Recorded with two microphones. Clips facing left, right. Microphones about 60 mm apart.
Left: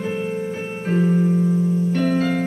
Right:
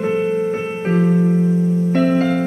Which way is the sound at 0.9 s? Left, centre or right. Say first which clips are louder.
Right 2 dB; right.